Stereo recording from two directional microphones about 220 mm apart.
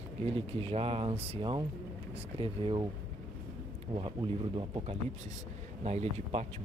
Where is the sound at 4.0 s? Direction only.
20° right (ahead or behind).